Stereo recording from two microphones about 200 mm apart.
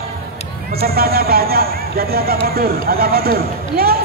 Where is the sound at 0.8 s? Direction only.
50° right (ahead or behind).